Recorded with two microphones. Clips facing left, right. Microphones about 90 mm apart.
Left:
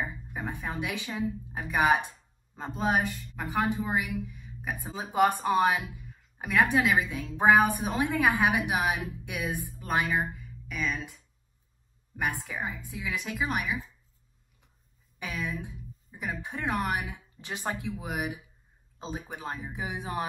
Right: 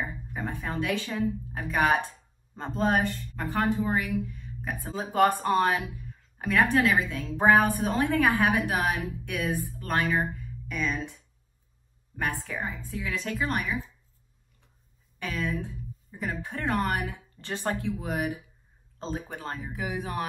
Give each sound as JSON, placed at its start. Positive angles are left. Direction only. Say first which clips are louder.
{"t": 0.3, "sound": "a woman's voice", "louder": "right 2 dB", "side_deg": 15}
{"t": 10.3, "sound": "a sound", "louder": "right 3 dB", "side_deg": 0}
{"t": 12.4, "sound": "speech", "louder": "right 1 dB", "side_deg": 10}
{"t": 15.1, "sound": "speech", "louder": "right 3 dB", "side_deg": 10}